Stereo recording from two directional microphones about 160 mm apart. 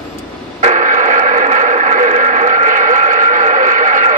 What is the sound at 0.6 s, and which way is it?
Radio, 50° right (ahead or behind).